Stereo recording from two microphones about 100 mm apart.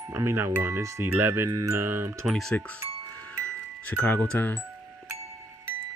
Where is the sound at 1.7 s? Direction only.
25° right (ahead or behind).